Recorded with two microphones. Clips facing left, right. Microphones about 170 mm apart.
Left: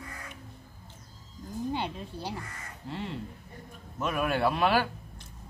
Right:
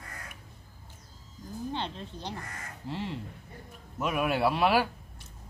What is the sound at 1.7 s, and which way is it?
Speech, 10° left (ahead or behind).